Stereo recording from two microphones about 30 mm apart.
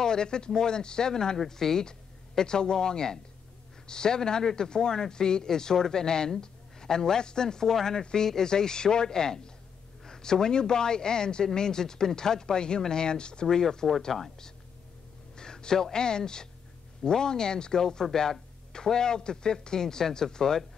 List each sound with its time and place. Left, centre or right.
0.0 s speech: left
13.5 s speech: centre
15.3 s speech: left